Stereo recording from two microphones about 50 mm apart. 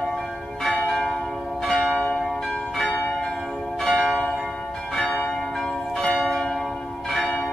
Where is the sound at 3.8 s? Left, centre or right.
Centre.